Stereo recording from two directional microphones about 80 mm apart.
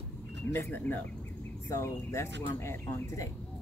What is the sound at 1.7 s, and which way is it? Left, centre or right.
Speech, left.